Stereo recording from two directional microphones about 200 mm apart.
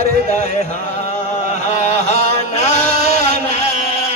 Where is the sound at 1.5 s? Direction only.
35° left (ahead or behind).